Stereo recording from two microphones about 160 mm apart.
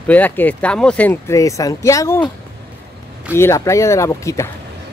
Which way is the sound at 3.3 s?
15° left (ahead or behind).